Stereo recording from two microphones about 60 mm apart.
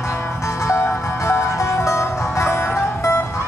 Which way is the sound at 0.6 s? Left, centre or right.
Left.